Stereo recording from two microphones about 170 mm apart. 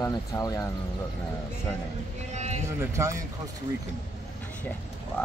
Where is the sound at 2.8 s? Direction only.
20° right (ahead or behind).